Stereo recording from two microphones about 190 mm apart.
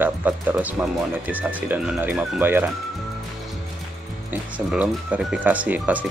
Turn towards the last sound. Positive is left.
turn(degrees=-10)  # may be behind; listen again after turning